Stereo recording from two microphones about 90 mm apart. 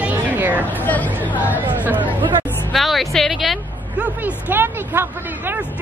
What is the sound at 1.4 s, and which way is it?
Speech, 20° right (ahead or behind).